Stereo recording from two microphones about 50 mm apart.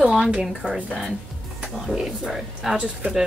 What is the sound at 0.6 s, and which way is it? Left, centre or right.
Speech, right.